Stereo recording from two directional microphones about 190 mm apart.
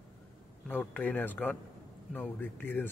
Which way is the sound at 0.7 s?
10° left (ahead or behind).